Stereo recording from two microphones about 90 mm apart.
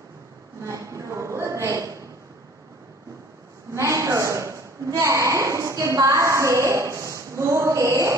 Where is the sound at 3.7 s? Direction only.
35° right (ahead or behind).